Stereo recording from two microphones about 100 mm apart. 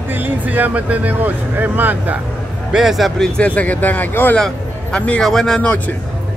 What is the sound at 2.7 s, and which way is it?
Speech, 5° right (ahead or behind).